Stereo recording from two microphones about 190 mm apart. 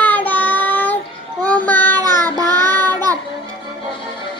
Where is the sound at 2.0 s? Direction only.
20° right (ahead or behind).